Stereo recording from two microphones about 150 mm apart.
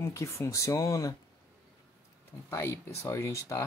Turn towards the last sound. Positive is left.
turn(degrees=20)  # may be behind; listen again after turning